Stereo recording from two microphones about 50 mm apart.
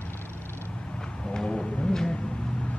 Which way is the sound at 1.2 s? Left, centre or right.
Centre.